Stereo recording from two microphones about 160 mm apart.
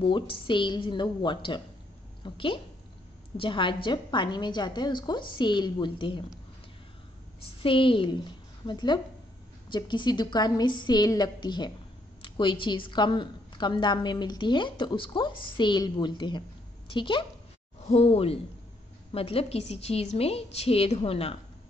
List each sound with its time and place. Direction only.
0.0 s a woman's voice: 30° left (ahead or behind)
7.6 s a woman's voice: 30° left (ahead or behind)